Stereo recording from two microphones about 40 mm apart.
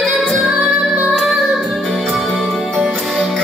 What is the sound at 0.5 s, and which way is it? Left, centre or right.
Music, centre.